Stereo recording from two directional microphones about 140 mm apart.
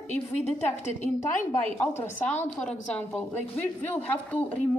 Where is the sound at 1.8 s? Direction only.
15° left (ahead or behind).